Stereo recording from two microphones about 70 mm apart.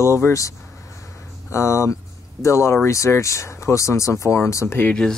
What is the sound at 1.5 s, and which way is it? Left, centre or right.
Speech, left.